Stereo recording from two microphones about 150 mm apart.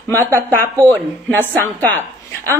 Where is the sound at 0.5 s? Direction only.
15° left (ahead or behind).